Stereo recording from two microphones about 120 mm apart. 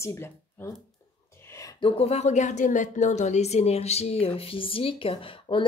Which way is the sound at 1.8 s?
55° left (ahead or behind).